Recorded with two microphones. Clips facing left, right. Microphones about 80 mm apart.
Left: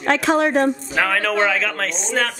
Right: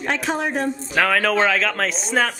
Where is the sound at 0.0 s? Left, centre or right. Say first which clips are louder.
Left 6 dB; left.